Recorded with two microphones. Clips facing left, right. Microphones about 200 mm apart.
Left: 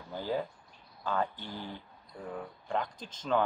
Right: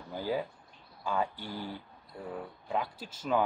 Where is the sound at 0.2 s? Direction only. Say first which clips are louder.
Right 1 dB; 10° right (ahead or behind).